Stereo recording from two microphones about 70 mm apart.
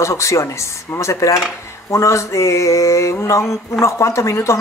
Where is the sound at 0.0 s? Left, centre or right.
Left.